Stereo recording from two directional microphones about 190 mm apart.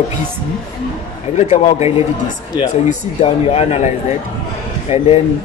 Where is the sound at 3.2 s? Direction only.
30° left (ahead or behind).